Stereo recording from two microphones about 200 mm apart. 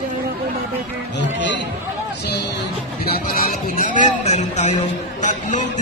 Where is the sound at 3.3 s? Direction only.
45° left (ahead or behind).